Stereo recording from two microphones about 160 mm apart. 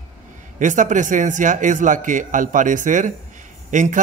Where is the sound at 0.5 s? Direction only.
50° right (ahead or behind).